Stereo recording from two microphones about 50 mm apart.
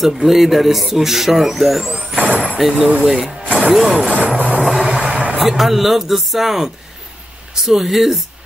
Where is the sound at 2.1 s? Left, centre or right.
Right.